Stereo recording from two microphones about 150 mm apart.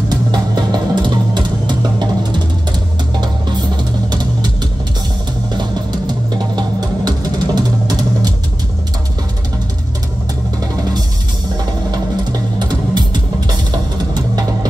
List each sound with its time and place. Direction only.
0.1 s music: 30° right (ahead or behind)
5.6 s music: 30° right (ahead or behind)
11.9 s music: 30° right (ahead or behind)